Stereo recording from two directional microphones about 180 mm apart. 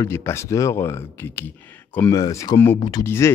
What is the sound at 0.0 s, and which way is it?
A man's voice, 15° left (ahead or behind).